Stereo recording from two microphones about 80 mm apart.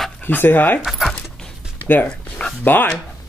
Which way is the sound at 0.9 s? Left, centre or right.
Centre.